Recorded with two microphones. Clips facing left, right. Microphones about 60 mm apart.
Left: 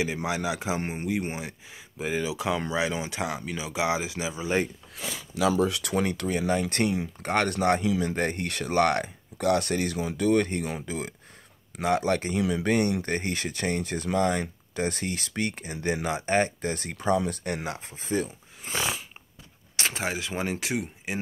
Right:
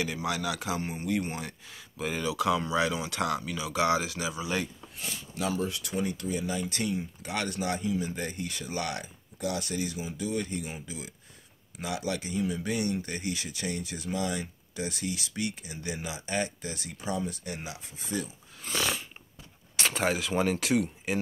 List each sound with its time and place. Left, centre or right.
0.0 s speech: left
0.7 s speech: left
1.0 s speech: centre
5.7 s speech: left
7.8 s speech: left
8.1 s speech: left
12.4 s speech: left
17.6 s speech: left
18.6 s dog: left
19.8 s speech: centre